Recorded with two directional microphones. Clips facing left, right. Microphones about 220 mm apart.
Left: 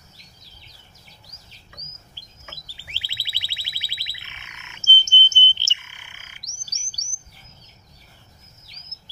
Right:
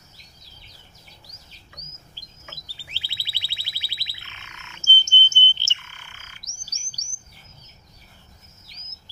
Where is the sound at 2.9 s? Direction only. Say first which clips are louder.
Left 1 dB; 15° left (ahead or behind).